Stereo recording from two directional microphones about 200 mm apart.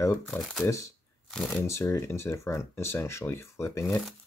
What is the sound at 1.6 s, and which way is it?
Speech, 15° left (ahead or behind).